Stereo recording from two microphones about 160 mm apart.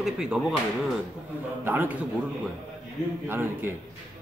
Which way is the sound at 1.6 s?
10° right (ahead or behind).